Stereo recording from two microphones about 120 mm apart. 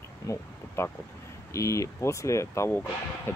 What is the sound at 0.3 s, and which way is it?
Speech, 25° left (ahead or behind).